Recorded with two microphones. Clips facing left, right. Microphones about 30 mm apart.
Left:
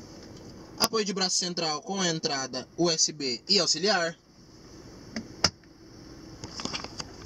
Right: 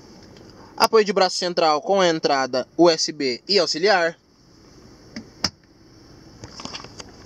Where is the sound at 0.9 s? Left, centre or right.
Right.